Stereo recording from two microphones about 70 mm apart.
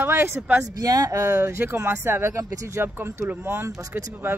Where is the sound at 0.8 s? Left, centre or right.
Right.